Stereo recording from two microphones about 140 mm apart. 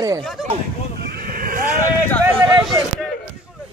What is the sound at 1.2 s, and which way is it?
Vehicle, 90° right.